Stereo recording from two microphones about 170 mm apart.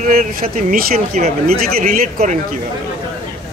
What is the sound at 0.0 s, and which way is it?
Speech, 55° right (ahead or behind).